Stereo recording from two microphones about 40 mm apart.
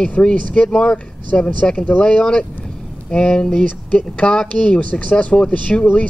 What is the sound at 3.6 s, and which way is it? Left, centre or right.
Speech, left.